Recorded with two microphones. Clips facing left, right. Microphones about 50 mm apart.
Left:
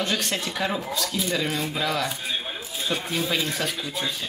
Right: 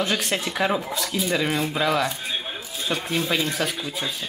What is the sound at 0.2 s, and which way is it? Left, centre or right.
Speech, centre.